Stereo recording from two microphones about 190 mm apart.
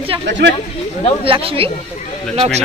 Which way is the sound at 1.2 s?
30° right (ahead or behind).